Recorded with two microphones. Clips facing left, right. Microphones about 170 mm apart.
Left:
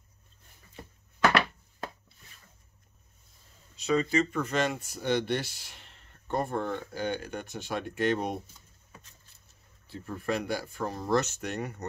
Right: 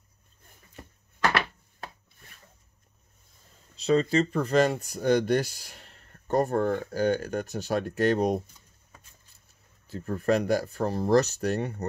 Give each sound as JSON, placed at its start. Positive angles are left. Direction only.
{"t": 3.7, "sound": "speech", "side_deg": -30}
{"t": 9.8, "sound": "speech", "side_deg": -45}